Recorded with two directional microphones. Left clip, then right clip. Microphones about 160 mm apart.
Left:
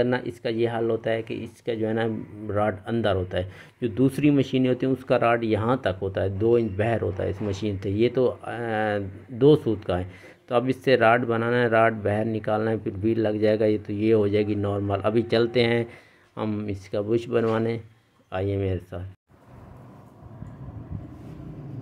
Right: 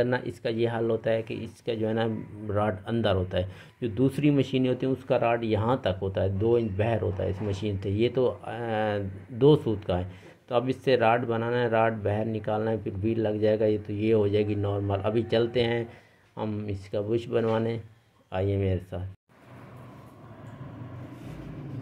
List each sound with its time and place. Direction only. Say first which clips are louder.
0.0 s speech: left 2 dB; 15° left (ahead or behind)